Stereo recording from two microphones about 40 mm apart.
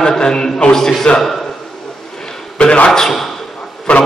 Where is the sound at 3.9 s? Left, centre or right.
Left.